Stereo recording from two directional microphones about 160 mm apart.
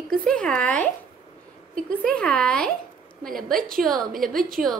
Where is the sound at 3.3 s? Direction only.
60° right (ahead or behind).